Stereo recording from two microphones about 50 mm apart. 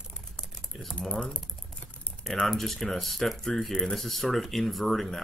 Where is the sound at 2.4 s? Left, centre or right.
Centre.